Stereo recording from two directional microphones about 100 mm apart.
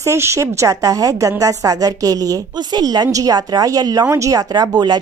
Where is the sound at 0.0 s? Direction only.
30° right (ahead or behind).